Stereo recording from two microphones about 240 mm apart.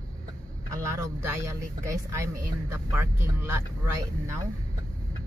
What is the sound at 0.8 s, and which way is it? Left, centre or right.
Speech, centre.